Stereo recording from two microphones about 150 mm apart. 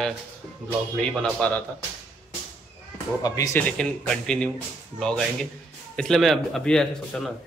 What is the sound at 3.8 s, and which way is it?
Speech, 5° left (ahead or behind).